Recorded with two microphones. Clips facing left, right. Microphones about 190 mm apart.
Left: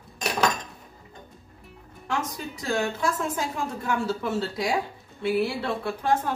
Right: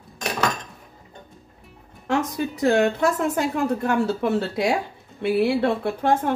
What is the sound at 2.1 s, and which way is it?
A woman's voice, 65° right (ahead or behind).